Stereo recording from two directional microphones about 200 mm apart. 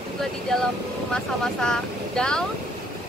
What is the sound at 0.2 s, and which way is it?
Speech, centre (ahead or behind).